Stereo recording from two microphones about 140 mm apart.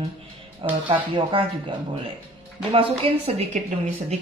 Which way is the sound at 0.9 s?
40° right (ahead or behind).